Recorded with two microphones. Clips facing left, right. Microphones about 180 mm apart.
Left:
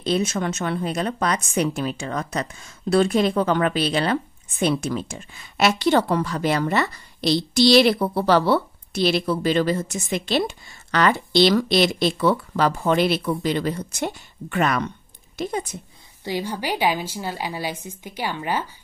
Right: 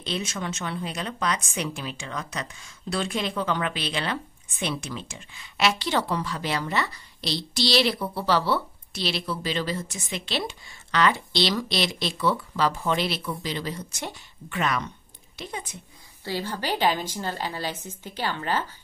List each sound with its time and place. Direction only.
0.0 s speech: 50° left (ahead or behind)
16.3 s a woman's voice: 15° left (ahead or behind)